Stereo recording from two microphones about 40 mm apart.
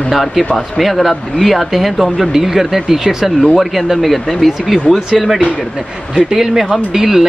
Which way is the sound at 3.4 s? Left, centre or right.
Centre.